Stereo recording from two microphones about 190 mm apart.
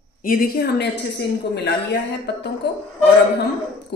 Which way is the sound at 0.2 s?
50° left (ahead or behind).